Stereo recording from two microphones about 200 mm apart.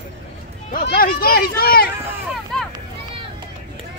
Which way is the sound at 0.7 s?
50° left (ahead or behind).